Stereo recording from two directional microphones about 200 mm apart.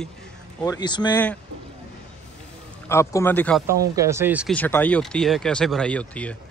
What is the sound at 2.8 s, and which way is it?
Speech, 15° left (ahead or behind).